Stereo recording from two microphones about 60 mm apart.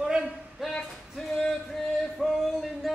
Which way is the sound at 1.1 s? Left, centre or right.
Centre.